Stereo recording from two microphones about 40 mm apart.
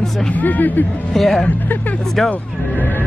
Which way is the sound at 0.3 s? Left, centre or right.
Left.